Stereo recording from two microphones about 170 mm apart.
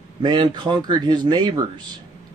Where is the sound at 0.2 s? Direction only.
30° right (ahead or behind).